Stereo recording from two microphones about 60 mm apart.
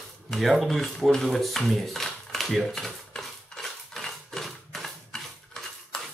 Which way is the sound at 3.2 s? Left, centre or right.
Centre.